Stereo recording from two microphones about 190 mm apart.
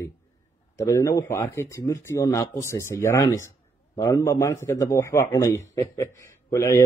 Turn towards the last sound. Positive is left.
turn(degrees=15)  # may be behind; listen again after turning